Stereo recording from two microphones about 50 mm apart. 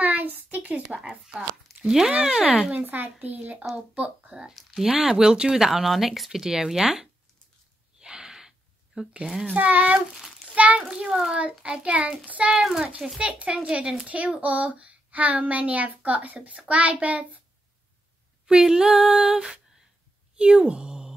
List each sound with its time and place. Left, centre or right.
0.0 s a sound: right
1.9 s speech: centre
2.7 s a child's voice: right
4.5 s speech: centre
8.0 s gasp: centre
9.5 s a child's voice: right
9.9 s a child's voice: centre
10.5 s a sound: right
10.8 s speech: centre
12.4 s speech: centre; by 17.4 s right
18.5 s speech: centre